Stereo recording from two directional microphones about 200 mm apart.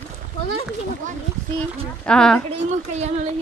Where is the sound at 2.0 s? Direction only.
5° left (ahead or behind).